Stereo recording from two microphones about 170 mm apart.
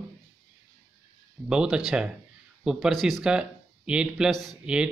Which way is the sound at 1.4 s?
5° right (ahead or behind).